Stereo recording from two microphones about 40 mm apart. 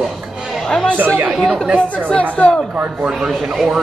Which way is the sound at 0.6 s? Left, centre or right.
Centre.